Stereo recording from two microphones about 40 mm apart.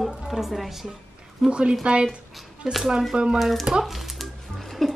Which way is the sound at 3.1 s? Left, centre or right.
Right.